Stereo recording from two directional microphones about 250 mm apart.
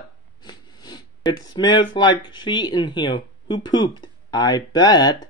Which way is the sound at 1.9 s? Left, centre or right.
Centre.